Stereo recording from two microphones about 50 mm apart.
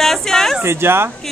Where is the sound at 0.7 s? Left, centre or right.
Right.